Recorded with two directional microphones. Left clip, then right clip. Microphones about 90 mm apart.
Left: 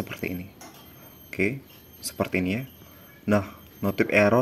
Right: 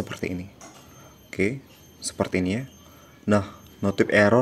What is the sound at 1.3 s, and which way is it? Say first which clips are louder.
Speech: right 1 dB; 15° right (ahead or behind).